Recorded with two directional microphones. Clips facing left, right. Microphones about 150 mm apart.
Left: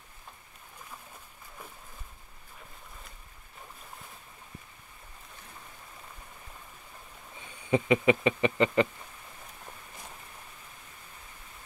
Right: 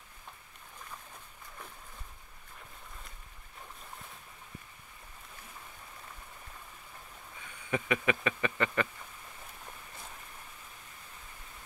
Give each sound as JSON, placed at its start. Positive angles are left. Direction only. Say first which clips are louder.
{"t": 7.3, "sound": "speech", "louder": "left 7 dB", "side_deg": 25}